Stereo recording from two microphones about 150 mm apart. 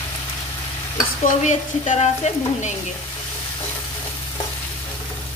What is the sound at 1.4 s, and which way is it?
Stir, 55° left (ahead or behind).